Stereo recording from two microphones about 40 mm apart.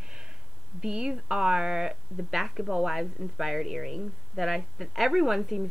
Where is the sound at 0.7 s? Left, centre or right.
Centre.